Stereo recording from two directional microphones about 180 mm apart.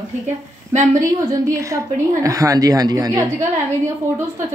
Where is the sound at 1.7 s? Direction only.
20° right (ahead or behind).